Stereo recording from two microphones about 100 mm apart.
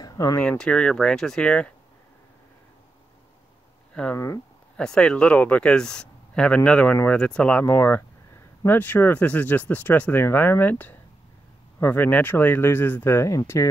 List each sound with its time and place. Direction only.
0.0 s a sound: 35° left (ahead or behind)
0.4 s speech: 10° left (ahead or behind)
4.1 s speech: 30° left (ahead or behind)
4.7 s speech: 10° left (ahead or behind); by 13.4 s 25° left (ahead or behind)